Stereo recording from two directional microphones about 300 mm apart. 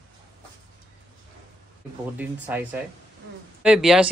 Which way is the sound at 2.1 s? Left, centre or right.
Centre.